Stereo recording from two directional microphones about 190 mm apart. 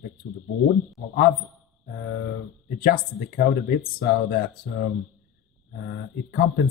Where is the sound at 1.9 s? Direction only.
50° left (ahead or behind).